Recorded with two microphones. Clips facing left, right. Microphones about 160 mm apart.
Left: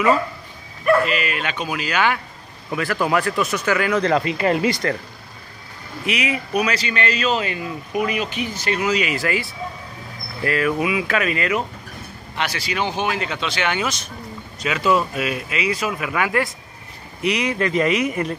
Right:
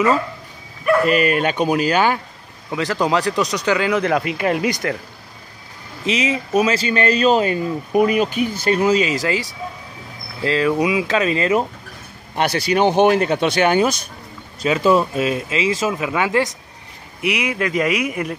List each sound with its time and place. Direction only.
1.0 s speech: 45° right (ahead or behind)
2.7 s speech: 20° right (ahead or behind); by 4.7 s 5° right (ahead or behind)
6.0 s speech: 25° right (ahead or behind)
6.9 s speech: 40° right (ahead or behind)
10.4 s speech: 20° right (ahead or behind)
12.4 s speech: 50° right (ahead or behind); by 16.4 s 20° right (ahead or behind)
17.2 s speech: 10° right (ahead or behind)